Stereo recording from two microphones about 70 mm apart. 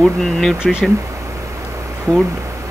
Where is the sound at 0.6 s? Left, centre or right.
Centre.